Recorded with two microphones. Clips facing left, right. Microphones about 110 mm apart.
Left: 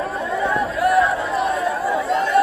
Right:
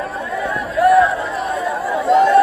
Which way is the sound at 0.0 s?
Centre (ahead or behind).